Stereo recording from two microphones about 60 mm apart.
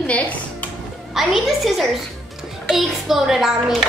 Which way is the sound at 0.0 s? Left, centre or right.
Left.